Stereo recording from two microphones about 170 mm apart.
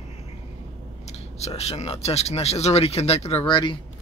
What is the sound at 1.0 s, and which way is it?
Speech, 40° left (ahead or behind).